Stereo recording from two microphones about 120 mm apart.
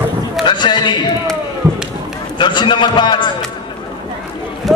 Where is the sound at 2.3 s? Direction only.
40° left (ahead or behind).